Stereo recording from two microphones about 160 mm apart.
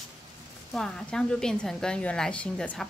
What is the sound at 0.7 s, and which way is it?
A woman's voice, 5° left (ahead or behind).